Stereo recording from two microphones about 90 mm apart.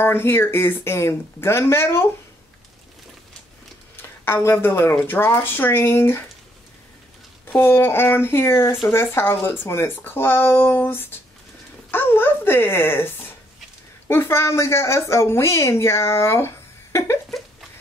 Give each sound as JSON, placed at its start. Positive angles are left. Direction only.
{"t": 0.0, "sound": "speech", "side_deg": 25}
{"t": 3.9, "sound": "a woman's voice", "side_deg": 25}
{"t": 7.4, "sound": "speech", "side_deg": 25}